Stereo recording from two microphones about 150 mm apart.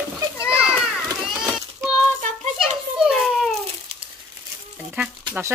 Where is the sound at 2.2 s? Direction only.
55° right (ahead or behind).